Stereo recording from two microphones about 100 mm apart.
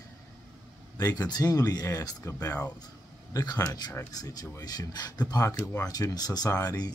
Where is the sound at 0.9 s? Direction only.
35° left (ahead or behind).